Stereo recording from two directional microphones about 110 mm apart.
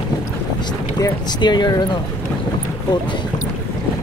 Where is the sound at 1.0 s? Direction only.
40° left (ahead or behind).